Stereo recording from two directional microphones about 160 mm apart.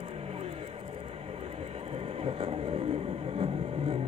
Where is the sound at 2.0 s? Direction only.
40° right (ahead or behind).